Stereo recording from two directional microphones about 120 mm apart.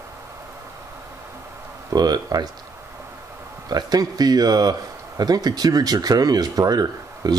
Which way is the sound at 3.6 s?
35° right (ahead or behind).